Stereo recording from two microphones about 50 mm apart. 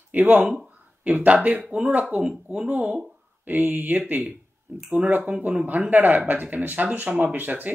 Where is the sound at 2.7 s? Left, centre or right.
Right.